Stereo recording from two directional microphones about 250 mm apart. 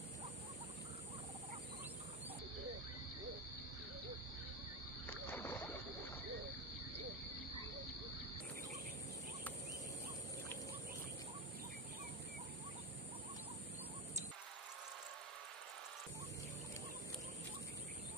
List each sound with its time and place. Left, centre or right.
5.1 s rowboat: centre